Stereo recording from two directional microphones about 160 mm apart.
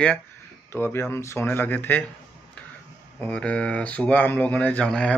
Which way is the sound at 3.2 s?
10° left (ahead or behind).